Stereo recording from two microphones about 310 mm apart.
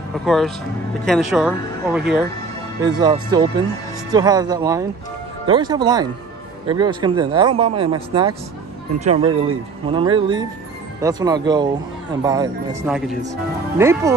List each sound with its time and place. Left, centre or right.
0.2 s speech: centre
2.8 s speech: centre